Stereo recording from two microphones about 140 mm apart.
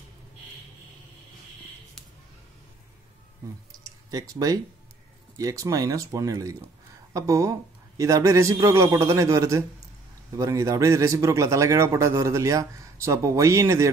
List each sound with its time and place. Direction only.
3.8 s typing: 25° right (ahead or behind)
5.4 s a man's voice: 25° right (ahead or behind)